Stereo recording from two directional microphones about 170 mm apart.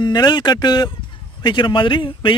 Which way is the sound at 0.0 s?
25° left (ahead or behind).